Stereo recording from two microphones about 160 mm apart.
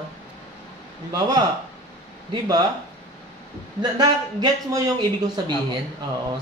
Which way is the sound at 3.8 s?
25° right (ahead or behind).